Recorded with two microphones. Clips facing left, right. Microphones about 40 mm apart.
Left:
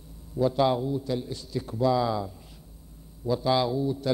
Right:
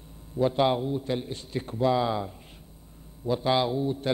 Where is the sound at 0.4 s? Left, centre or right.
Right.